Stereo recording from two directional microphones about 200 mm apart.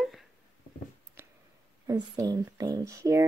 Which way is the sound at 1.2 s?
10° right (ahead or behind).